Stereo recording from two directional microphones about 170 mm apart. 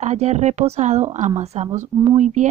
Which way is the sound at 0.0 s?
40° right (ahead or behind).